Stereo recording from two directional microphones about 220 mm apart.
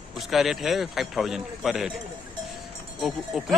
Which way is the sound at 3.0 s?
Centre (ahead or behind).